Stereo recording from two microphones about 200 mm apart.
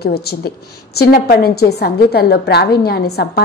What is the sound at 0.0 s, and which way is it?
A woman's voice, 50° left (ahead or behind).